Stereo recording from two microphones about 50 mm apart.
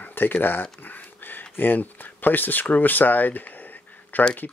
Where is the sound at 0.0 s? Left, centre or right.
Left.